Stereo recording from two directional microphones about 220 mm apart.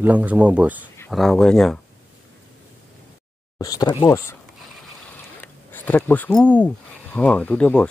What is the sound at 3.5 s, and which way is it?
Speech, 15° left (ahead or behind).